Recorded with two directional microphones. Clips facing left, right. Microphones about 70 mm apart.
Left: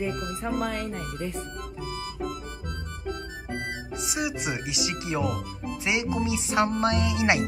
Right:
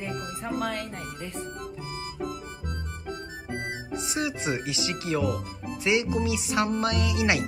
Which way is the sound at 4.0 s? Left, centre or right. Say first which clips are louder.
Even; centre.